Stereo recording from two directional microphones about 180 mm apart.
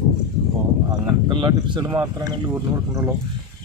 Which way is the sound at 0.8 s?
25° right (ahead or behind).